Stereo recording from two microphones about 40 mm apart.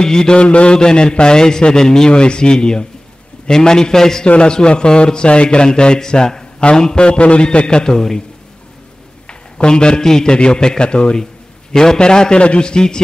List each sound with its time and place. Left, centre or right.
0.0 s a man's voice: centre
7.1 s a man's voice: left; by 8.2 s centre
9.3 s a sound: left
10.0 s a man's voice: centre